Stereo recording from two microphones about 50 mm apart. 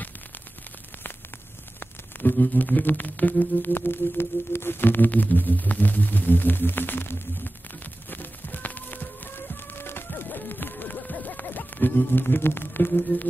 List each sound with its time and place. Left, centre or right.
1.8 s music: left